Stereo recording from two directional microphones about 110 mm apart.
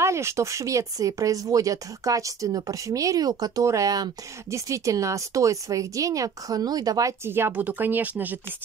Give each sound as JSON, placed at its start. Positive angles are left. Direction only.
{"t": 0.0, "sound": "speech", "side_deg": -25}